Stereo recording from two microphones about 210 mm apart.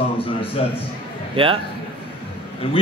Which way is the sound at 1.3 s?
25° right (ahead or behind).